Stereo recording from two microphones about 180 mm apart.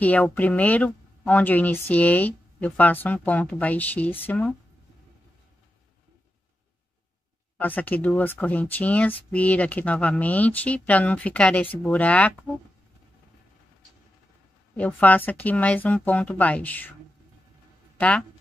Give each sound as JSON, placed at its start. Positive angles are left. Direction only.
{"t": 0.0, "sound": "speech", "side_deg": 10}
{"t": 7.5, "sound": "speech", "side_deg": 10}
{"t": 14.8, "sound": "speech", "side_deg": 10}
{"t": 17.9, "sound": "speech", "side_deg": 10}